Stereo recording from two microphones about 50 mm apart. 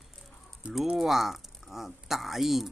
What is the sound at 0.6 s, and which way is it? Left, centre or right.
Speech, right.